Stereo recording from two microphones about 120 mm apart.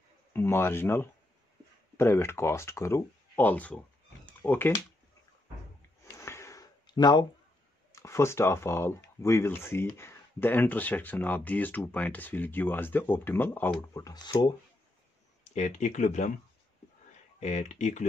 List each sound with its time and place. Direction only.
0.3 s speech: 20° left (ahead or behind)
6.0 s a sound: 25° left (ahead or behind)
7.9 s speech: 25° left (ahead or behind)
13.9 s speech: 30° left (ahead or behind)
15.5 s speech: 80° left
17.4 s speech: 70° left (ahead or behind)